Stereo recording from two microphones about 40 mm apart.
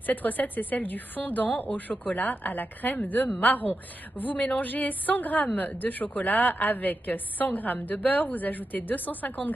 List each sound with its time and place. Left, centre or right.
0.0 s a woman's voice: left